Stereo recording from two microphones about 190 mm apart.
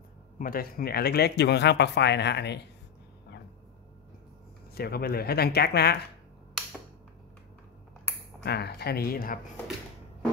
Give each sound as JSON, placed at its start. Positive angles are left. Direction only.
{"t": 0.4, "sound": "speech", "side_deg": 50}
{"t": 4.7, "sound": "speech", "side_deg": 55}
{"t": 8.5, "sound": "speech", "side_deg": 60}